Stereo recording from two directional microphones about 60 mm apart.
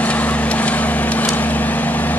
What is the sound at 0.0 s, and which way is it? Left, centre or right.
Vehicle, left.